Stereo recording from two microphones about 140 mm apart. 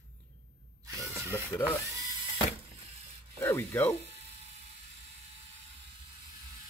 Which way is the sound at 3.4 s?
15° left (ahead or behind).